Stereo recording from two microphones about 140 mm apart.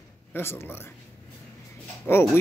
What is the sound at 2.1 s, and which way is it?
Speech, 15° left (ahead or behind).